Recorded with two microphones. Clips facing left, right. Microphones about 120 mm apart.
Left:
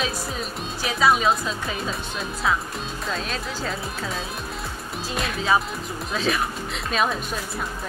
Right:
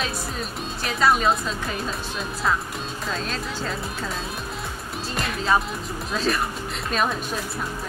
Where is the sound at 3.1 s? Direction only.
Centre (ahead or behind).